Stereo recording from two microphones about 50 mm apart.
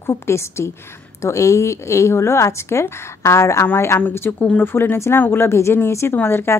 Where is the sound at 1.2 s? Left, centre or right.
Left.